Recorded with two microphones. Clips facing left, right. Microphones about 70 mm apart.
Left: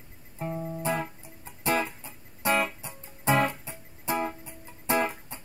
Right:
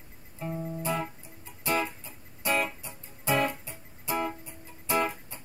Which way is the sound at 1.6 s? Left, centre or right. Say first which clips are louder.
Left 2 dB; left.